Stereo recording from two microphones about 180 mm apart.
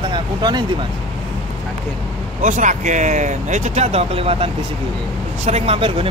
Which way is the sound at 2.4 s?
45° right (ahead or behind).